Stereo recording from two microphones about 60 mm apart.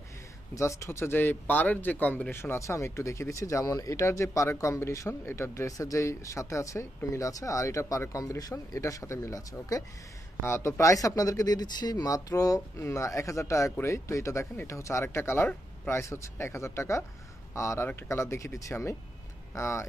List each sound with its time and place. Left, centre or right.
0.6 s speech: left
1.1 s speech: left
2.3 s speech: left
2.6 s speech: left
4.0 s speech: left
5.7 s speech: left
10.4 s speech: left
12.7 s speech: left